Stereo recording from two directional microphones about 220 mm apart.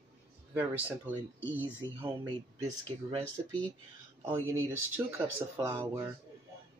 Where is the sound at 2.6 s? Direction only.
25° right (ahead or behind).